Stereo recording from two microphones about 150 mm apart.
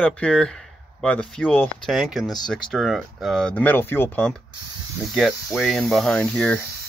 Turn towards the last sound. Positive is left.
turn(degrees=10)  # may be behind; listen again after turning